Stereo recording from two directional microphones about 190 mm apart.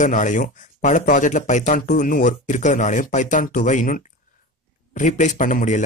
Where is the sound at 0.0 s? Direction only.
40° left (ahead or behind).